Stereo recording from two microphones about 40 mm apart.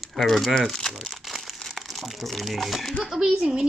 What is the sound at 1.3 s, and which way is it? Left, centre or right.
Crumpling, centre.